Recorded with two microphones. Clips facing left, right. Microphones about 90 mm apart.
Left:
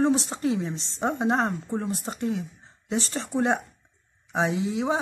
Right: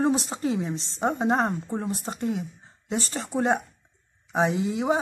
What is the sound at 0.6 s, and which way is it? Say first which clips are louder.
A woman's voice: right 1 dB; 15° right (ahead or behind).